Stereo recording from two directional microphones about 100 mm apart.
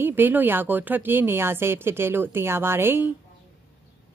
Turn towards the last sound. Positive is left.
turn(degrees=-20)  # may be behind; listen again after turning